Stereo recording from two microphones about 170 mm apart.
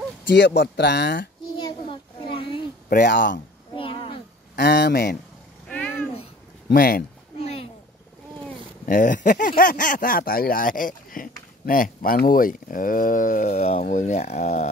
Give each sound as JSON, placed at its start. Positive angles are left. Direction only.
{"t": 0.6, "sound": "speech", "side_deg": 80}
{"t": 1.5, "sound": "a sound", "side_deg": 30}
{"t": 2.9, "sound": "speech", "side_deg": 55}
{"t": 3.7, "sound": "a sound", "side_deg": 30}
{"t": 4.6, "sound": "speech", "side_deg": 65}
{"t": 5.7, "sound": "cat", "side_deg": 10}
{"t": 6.7, "sound": "speech", "side_deg": 60}
{"t": 7.3, "sound": "a sound", "side_deg": 35}
{"t": 8.8, "sound": "speech", "side_deg": 55}